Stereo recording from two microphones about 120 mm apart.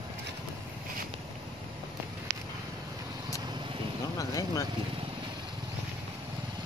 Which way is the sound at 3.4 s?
40° right (ahead or behind).